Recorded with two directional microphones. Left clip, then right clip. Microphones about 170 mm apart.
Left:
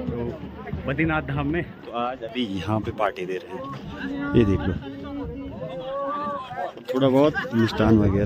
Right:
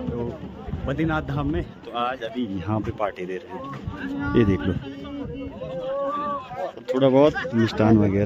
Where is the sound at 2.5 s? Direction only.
15° left (ahead or behind).